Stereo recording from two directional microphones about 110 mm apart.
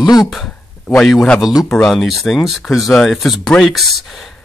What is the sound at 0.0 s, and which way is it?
Speech, 35° left (ahead or behind).